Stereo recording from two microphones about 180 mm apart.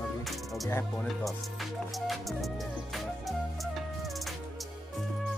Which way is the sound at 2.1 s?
Centre (ahead or behind).